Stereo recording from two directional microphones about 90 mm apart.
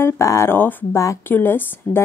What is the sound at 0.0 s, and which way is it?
Speech, 30° left (ahead or behind).